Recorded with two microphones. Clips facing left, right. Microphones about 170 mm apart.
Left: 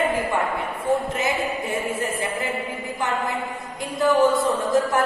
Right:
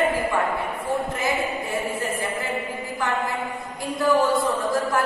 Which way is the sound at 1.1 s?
20° left (ahead or behind).